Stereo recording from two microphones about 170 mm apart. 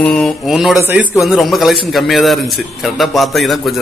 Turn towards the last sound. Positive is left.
turn(degrees=0)  # may be behind; listen again after turning